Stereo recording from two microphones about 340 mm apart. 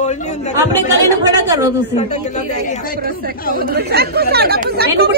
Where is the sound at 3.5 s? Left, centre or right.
Right.